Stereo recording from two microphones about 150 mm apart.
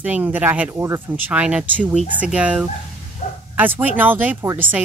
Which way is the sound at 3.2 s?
55° left (ahead or behind).